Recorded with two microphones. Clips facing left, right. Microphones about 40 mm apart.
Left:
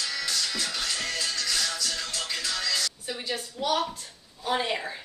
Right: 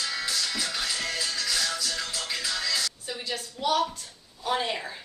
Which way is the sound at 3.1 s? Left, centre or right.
Centre.